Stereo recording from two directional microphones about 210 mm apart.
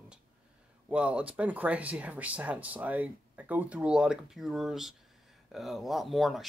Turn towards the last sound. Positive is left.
turn(degrees=0)  # may be behind; listen again after turning